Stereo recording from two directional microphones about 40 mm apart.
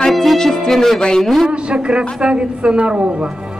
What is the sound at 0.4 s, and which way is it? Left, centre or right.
Speech, centre.